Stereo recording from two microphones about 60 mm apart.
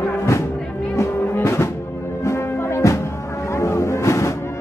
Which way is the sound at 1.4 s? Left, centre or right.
Left.